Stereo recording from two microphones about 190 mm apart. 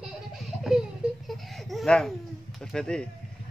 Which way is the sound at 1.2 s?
Centre (ahead or behind).